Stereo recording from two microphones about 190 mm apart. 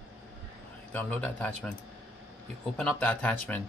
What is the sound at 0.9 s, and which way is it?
Speech, 10° left (ahead or behind).